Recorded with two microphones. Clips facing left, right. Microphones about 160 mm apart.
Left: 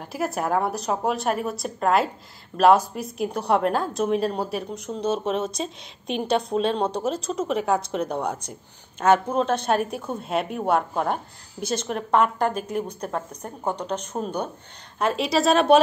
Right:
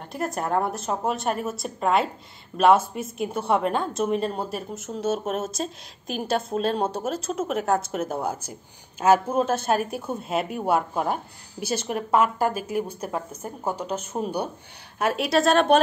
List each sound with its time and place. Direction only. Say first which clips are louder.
0.1 s a woman's voice: left 1 dB; centre (ahead or behind)